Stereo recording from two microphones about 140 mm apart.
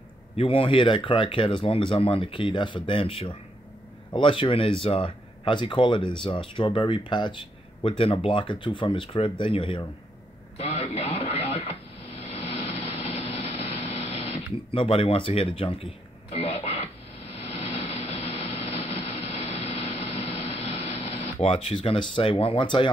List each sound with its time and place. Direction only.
0.4 s speech: 40° left (ahead or behind)
10.6 s radio: 50° left (ahead or behind)
11.4 s a sound: 50° left (ahead or behind)
18.4 s vehicle: 45° left (ahead or behind)